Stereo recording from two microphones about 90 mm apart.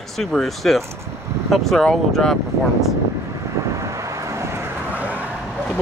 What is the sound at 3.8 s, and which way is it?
Vehicle, 35° right (ahead or behind).